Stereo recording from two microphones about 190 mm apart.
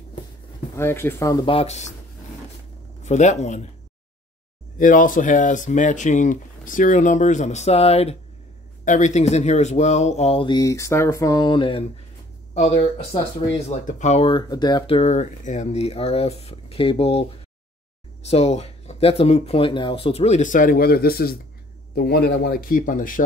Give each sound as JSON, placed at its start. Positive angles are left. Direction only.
{"t": 0.7, "sound": "speech", "side_deg": 15}
{"t": 3.0, "sound": "a man's voice", "side_deg": 35}
{"t": 4.7, "sound": "speech", "side_deg": 45}
{"t": 18.2, "sound": "speech", "side_deg": 35}